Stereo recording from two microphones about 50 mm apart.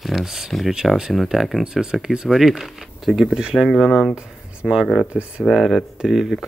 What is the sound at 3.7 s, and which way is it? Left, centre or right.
Speech, centre.